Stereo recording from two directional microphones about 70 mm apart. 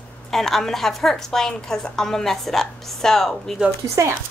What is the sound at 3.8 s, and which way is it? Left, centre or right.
Speech, right.